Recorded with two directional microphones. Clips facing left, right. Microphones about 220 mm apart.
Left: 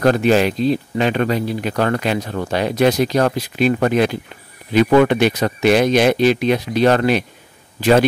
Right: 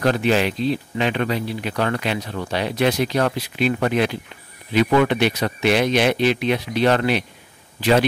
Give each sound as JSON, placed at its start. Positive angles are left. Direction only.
{"t": 0.0, "sound": "speech", "side_deg": 45}